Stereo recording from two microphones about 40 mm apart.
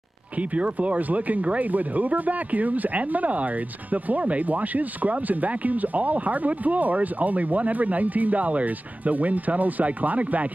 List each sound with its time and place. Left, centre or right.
0.4 s speech: right